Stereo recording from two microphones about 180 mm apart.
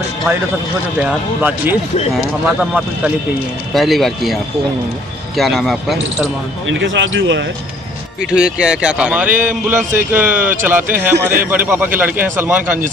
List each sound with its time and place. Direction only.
1.0 s speech: 10° right (ahead or behind)
6.7 s speech: 90° right
8.3 s speech: 5° right (ahead or behind)